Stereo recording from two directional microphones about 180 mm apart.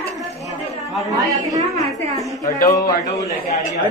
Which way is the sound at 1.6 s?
20° left (ahead or behind).